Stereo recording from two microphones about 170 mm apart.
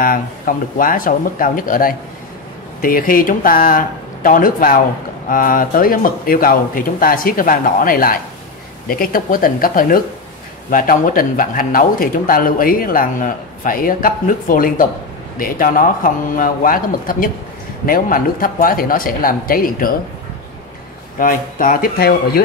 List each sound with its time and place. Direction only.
0.0 s speech: 55° left (ahead or behind)
21.2 s speech: 50° left (ahead or behind)